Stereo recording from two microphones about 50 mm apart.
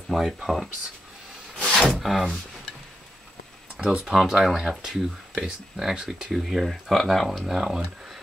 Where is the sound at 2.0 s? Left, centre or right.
Centre.